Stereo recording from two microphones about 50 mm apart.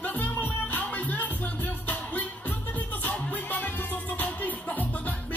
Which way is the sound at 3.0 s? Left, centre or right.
Left.